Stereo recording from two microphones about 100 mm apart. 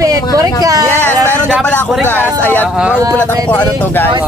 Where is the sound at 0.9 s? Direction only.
20° left (ahead or behind).